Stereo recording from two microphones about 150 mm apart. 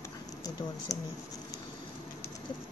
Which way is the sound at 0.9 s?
20° left (ahead or behind).